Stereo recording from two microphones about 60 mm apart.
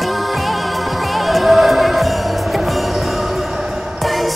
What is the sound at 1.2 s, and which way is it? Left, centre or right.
Music, centre.